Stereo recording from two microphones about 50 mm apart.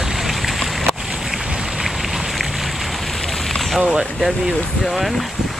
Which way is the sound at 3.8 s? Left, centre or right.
Centre.